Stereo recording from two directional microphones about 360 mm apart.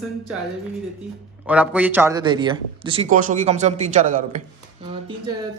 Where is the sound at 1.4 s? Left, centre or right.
Centre.